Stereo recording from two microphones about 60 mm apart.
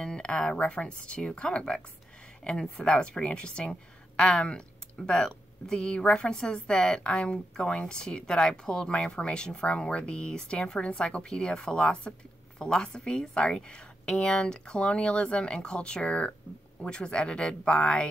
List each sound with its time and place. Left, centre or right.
0.0 s a woman's voice: centre